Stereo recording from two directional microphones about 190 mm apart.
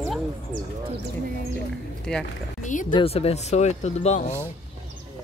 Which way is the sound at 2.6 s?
40° left (ahead or behind).